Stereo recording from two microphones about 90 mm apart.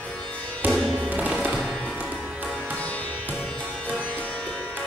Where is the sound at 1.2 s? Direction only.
15° right (ahead or behind).